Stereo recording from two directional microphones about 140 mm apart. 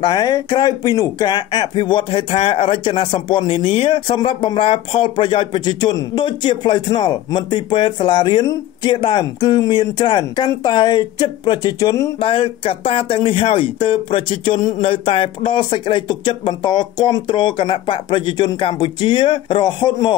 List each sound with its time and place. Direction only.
0.0 s speech: 30° left (ahead or behind)
12.2 s speech: 40° left (ahead or behind)